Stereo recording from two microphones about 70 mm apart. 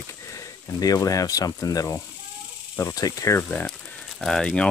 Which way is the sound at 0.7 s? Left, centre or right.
Left.